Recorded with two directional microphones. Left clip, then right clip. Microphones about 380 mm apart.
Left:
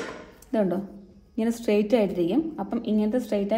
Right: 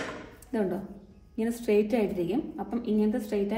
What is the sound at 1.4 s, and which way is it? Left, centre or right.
A woman's voice, left.